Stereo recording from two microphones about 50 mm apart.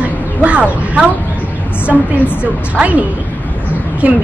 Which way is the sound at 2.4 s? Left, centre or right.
Right.